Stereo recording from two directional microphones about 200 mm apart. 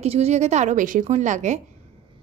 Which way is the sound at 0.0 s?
30° right (ahead or behind).